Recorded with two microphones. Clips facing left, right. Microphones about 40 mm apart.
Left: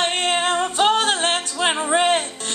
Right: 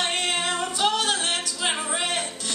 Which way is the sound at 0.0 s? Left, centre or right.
Left.